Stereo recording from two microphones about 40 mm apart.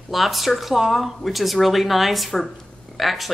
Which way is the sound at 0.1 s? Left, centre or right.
Centre.